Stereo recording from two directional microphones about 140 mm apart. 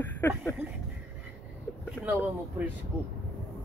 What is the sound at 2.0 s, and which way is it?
Speech, 15° right (ahead or behind).